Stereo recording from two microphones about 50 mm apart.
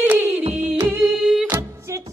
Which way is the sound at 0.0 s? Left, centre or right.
Right.